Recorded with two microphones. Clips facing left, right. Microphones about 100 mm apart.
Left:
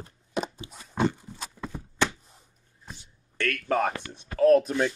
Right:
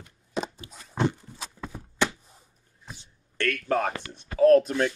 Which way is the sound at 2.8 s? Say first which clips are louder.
Even; centre (ahead or behind).